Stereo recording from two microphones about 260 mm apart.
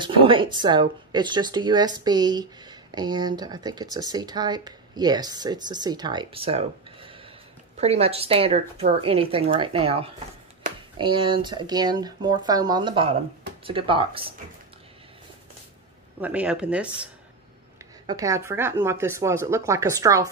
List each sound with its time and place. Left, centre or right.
0.0 s a woman's voice: centre
10.6 s a sound: right
11.0 s a woman's voice: centre
16.2 s speech: centre